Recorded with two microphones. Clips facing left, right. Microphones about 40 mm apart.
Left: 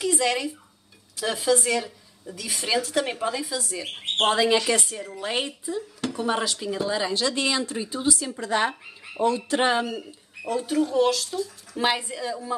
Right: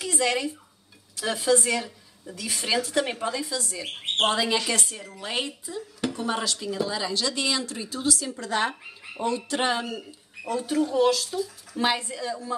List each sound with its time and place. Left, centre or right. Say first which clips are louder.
0.0 s a woman's voice: left 2 dB; centre
9.5 s speech: left 3 dB; centre
9.9 s a woman's voice: left 2 dB; centre
11.8 s speech: left 1 dB; centre